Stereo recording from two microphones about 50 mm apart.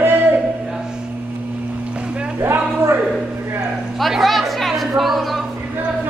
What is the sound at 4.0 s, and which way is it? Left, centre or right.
Chatter, centre.